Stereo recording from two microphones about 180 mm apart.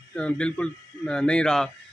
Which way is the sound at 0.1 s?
5° left (ahead or behind).